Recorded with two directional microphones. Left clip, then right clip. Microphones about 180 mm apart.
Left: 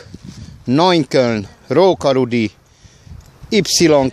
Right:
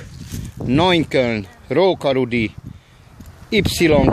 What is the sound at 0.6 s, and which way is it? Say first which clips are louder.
Speech: left 3 dB; 20° left (ahead or behind).